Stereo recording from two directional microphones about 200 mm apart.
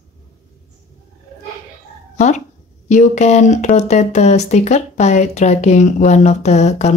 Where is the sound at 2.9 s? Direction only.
35° left (ahead or behind).